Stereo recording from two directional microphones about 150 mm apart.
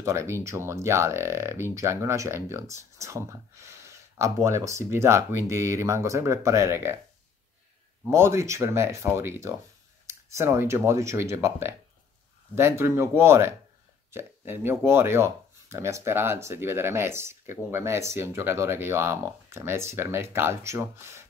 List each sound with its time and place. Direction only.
0.0 s speech: 20° right (ahead or behind)
8.0 s speech: 15° right (ahead or behind)